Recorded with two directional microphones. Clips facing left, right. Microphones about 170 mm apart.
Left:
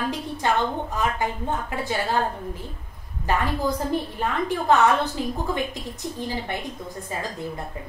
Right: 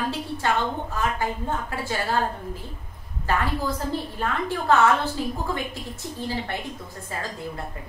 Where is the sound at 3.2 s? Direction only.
15° left (ahead or behind).